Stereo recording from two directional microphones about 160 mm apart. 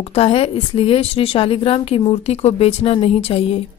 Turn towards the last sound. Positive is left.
turn(degrees=40)  # may be behind; listen again after turning